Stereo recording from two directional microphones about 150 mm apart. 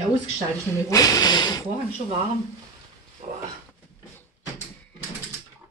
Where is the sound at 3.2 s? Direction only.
50° right (ahead or behind).